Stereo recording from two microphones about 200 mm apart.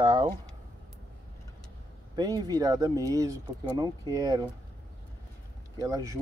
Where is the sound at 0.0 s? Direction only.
25° right (ahead or behind).